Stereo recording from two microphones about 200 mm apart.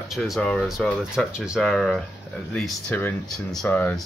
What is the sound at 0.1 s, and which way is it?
Speech, centre (ahead or behind).